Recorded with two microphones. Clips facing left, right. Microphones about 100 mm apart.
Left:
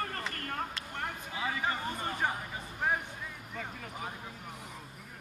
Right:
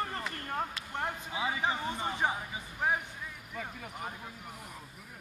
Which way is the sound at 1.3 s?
15° right (ahead or behind).